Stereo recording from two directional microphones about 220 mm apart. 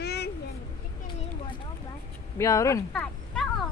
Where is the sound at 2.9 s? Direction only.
5° left (ahead or behind).